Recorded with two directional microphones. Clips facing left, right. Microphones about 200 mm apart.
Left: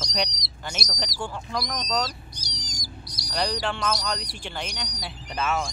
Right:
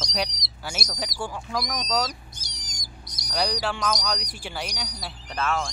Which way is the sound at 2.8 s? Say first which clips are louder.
Left 4 dB; centre (ahead or behind).